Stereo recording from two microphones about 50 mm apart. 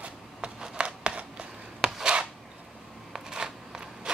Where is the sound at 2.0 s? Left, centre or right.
Centre.